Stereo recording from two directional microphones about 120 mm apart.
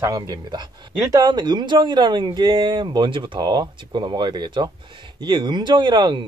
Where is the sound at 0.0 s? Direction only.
30° right (ahead or behind).